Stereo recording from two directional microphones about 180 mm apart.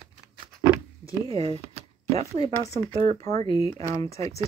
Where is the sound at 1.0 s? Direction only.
35° right (ahead or behind).